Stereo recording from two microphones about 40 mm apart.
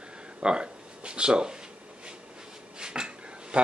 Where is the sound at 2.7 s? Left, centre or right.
Centre.